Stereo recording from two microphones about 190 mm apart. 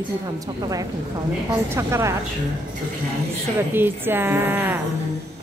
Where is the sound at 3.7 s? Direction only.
10° right (ahead or behind).